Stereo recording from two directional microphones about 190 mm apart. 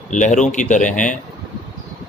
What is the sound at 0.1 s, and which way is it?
Speech, 40° left (ahead or behind).